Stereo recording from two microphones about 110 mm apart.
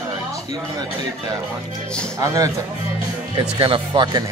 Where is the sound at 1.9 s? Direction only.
10° left (ahead or behind).